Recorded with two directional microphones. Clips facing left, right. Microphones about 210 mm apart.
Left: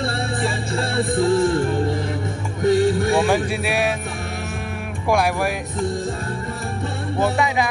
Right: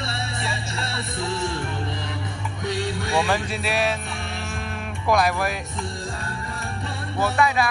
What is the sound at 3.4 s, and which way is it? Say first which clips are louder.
Speech: left 3 dB; 10° left (ahead or behind).